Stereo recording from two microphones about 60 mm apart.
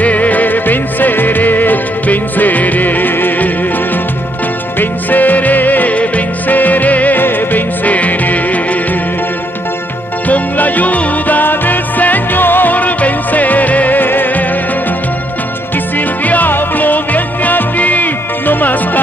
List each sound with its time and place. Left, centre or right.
0.0 s music: left
4.7 s music: left
10.2 s music: left
16.3 s music: left